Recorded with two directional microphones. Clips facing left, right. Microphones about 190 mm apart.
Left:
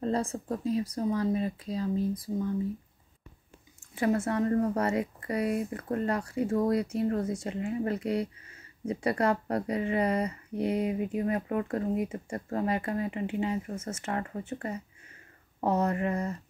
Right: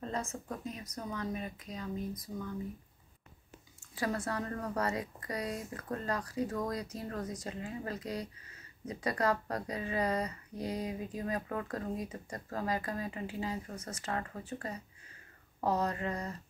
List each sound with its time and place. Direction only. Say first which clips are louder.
0.0 s speech: left 8 dB; 35° left (ahead or behind)
3.9 s speech: left 8 dB; 25° left (ahead or behind)